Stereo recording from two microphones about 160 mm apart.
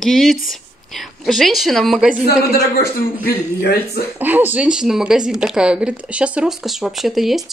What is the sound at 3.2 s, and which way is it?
Speech, 75° left (ahead or behind).